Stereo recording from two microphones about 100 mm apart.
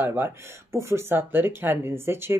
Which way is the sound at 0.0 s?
20° right (ahead or behind).